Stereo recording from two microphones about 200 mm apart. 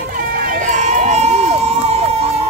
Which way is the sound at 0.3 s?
45° right (ahead or behind).